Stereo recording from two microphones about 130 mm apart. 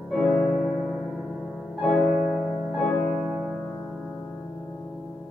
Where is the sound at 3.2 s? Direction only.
10° right (ahead or behind).